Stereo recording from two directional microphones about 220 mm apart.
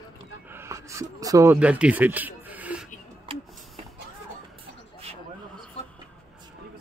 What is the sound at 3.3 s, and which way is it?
Music, 25° right (ahead or behind).